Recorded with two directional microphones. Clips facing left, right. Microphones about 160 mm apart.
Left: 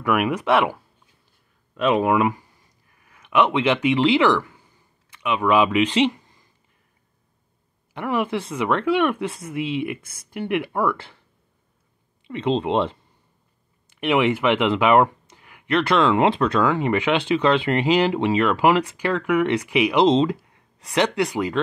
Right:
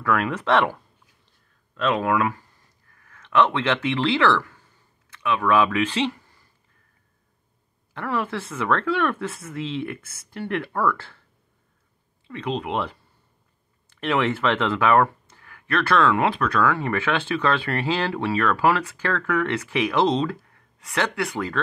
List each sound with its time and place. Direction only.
0.0 s speech: 15° left (ahead or behind)
1.8 s speech: 15° left (ahead or behind)
2.9 s a sound: 15° left (ahead or behind)
7.9 s speech: 15° left (ahead or behind)
12.3 s speech: 25° left (ahead or behind)
13.8 s speech: 15° left (ahead or behind)